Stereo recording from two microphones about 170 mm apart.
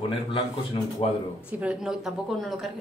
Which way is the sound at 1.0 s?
35° left (ahead or behind).